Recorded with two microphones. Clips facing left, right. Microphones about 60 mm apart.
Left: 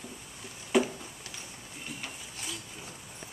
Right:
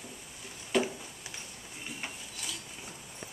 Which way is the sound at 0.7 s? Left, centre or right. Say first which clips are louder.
Left 3 dB; centre.